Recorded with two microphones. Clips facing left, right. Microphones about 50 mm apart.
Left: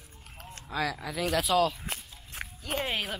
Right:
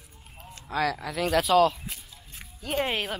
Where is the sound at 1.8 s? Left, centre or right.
Left.